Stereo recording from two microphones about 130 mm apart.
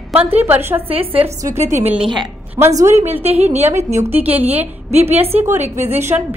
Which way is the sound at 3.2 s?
50° right (ahead or behind).